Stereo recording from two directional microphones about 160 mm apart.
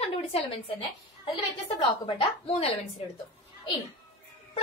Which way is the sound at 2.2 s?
35° left (ahead or behind).